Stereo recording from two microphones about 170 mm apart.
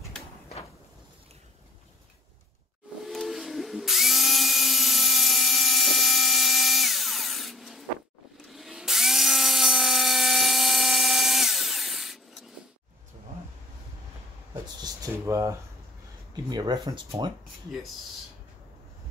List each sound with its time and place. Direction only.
3.1 s drill: centre (ahead or behind)
8.5 s tools: centre (ahead or behind)
14.5 s a sound: 20° right (ahead or behind)
16.4 s speech: 25° right (ahead or behind)